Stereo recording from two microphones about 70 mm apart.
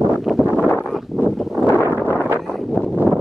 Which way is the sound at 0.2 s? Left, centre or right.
Centre.